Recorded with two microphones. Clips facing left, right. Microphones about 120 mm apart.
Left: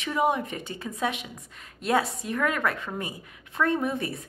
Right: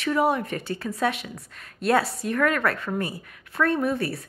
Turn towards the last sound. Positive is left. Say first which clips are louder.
# right 3 dB
turn(degrees=20)  # may be behind; listen again after turning